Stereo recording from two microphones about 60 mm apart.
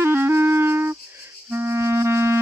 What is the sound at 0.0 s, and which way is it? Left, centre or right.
Music, right.